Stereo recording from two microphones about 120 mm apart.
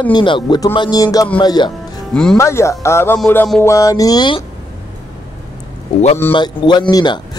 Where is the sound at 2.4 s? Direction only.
25° left (ahead or behind); by 4.4 s 40° left (ahead or behind).